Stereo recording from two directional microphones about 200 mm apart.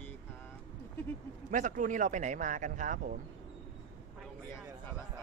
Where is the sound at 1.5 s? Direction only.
40° right (ahead or behind).